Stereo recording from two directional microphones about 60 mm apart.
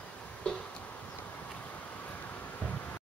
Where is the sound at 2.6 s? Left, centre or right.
Left.